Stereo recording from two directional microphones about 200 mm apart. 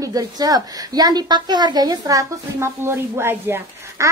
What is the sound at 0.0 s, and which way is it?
A woman's voice, 15° right (ahead or behind).